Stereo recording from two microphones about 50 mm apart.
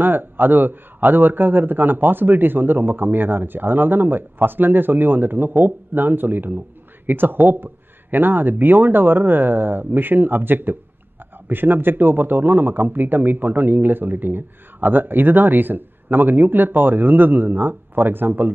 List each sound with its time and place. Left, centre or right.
0.0 s a man's voice: right